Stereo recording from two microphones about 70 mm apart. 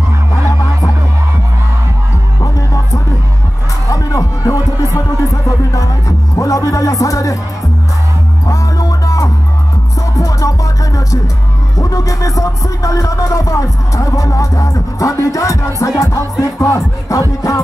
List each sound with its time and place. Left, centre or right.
3.9 s music: left
8.5 s music: left